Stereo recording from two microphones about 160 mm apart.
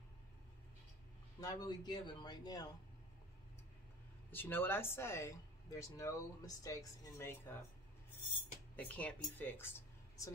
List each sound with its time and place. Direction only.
1.4 s speech: 25° left (ahead or behind)
4.3 s speech: 15° left (ahead or behind)
8.7 s speech: 10° left (ahead or behind)